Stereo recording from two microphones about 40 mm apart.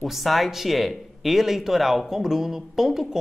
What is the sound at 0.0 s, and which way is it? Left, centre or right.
Speech, centre.